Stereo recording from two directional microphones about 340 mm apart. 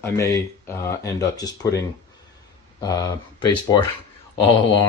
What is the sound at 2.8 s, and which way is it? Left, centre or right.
Speech, centre.